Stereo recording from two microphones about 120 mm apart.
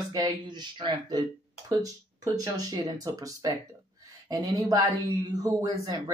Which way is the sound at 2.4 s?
35° right (ahead or behind).